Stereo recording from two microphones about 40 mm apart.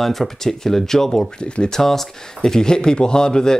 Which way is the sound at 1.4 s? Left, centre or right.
Left.